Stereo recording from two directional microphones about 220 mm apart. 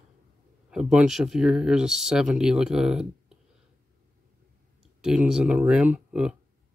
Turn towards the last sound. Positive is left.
turn(degrees=-5)  # may be behind; listen again after turning